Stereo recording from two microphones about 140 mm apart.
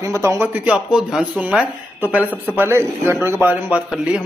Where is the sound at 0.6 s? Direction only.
5° right (ahead or behind).